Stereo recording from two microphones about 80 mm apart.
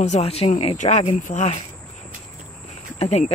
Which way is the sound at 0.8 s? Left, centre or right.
Left.